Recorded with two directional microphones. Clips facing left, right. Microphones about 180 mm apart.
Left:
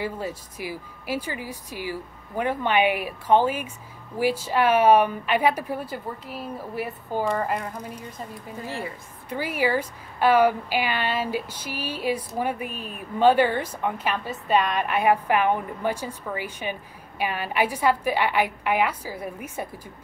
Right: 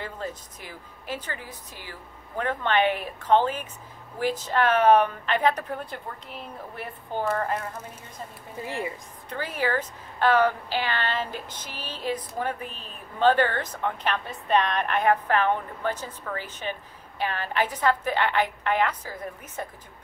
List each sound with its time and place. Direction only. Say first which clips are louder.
0.0 s a woman's voice: left 5 dB; 10° left (ahead or behind)
8.6 s speech: right 1 dB; 15° right (ahead or behind)
9.3 s a woman's voice: left 3 dB; 10° left (ahead or behind)